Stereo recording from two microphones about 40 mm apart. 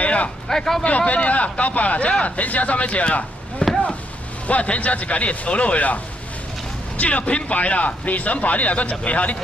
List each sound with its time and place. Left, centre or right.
0.0 s a sound: left
0.5 s speech: centre
0.8 s speech: left
7.0 s speech: left